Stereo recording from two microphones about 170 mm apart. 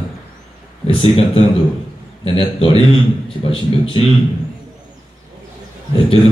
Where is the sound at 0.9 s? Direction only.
35° left (ahead or behind).